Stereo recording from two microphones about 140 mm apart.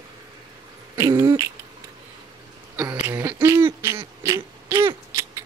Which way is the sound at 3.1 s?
20° right (ahead or behind).